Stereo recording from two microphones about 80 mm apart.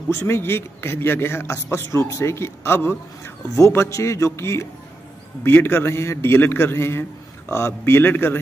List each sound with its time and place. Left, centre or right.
0.1 s a man's voice: left